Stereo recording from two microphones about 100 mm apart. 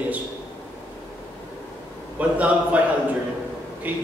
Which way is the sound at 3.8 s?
15° right (ahead or behind).